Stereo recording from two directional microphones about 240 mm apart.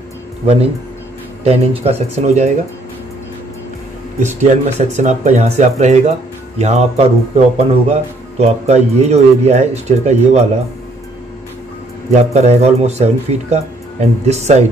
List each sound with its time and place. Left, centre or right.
1.4 s speech: right
4.2 s speech: right
12.1 s speech: right